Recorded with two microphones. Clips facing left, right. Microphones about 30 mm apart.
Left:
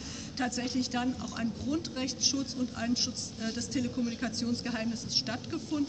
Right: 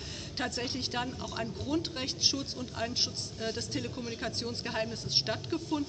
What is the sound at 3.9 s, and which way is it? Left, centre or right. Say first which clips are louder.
Speech: left 3 dB; right.